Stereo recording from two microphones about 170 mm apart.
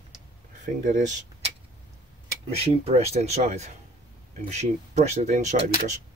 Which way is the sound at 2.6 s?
35° right (ahead or behind).